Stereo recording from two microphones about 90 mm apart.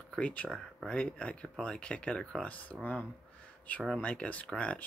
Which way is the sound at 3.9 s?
15° left (ahead or behind).